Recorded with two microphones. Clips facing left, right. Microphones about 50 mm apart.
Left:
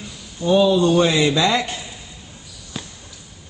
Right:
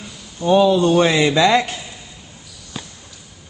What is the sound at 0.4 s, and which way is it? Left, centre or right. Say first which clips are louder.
Speech: right 2 dB; right.